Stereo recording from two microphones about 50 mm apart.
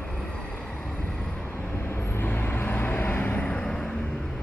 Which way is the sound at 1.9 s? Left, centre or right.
Left.